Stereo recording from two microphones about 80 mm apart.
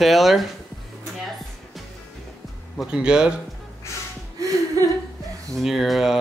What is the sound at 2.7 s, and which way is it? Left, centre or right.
Speech, centre.